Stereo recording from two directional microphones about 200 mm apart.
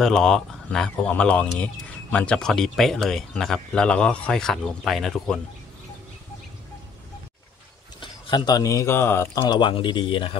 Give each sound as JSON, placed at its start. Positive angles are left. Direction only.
{"t": 0.0, "sound": "speech", "side_deg": 5}
{"t": 8.0, "sound": "speech", "side_deg": 25}
{"t": 9.4, "sound": "speech", "side_deg": 25}